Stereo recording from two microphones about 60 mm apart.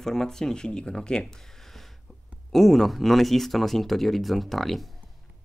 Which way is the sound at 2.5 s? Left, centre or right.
Centre.